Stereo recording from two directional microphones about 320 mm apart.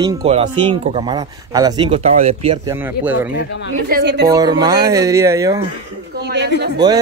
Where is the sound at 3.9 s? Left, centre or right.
Right.